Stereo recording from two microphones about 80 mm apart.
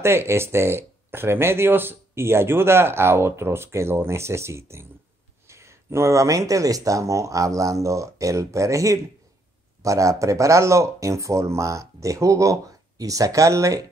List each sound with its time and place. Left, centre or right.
0.0 s speech: right